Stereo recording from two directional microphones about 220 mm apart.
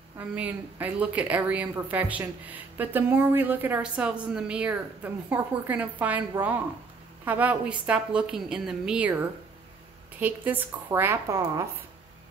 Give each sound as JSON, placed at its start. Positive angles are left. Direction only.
{"t": 0.4, "sound": "a woman's voice", "side_deg": -5}